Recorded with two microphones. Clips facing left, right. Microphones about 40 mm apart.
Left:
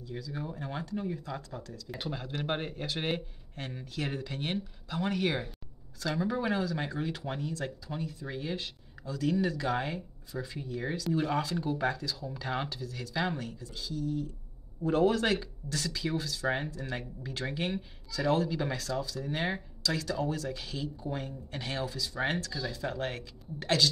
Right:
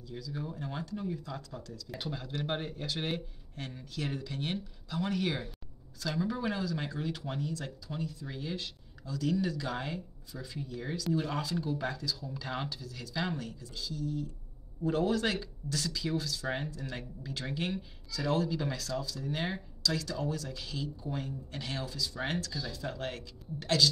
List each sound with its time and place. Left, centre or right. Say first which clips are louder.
0.2 s speech: right 1 dB; centre
0.8 s speech: left 2 dB; left
8.0 s speech: right 2 dB; left
8.3 s speech: left 3 dB; left
14.8 s speech: left 3 dB; centre
15.0 s speech: left 3 dB; left